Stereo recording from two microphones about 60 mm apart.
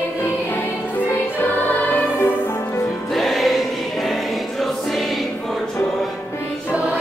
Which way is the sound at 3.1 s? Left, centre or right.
Centre.